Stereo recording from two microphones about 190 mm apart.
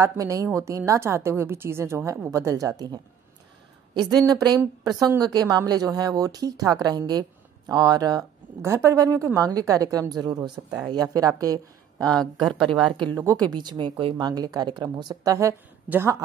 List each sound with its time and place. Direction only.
0.0 s a woman's voice: 15° right (ahead or behind)
4.3 s a woman's voice: 20° right (ahead or behind)
12.0 s speech: 5° left (ahead or behind)
12.4 s a woman's voice: 25° right (ahead or behind)